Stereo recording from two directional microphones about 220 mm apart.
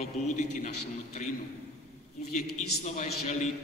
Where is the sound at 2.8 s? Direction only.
30° left (ahead or behind).